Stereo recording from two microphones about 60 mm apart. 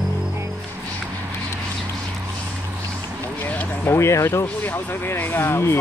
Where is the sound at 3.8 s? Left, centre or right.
Left.